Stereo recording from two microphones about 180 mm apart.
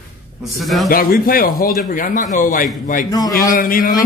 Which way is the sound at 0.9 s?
55° left (ahead or behind).